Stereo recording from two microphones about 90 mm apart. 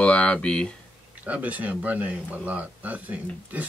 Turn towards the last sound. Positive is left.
turn(degrees=-15)  # may be behind; listen again after turning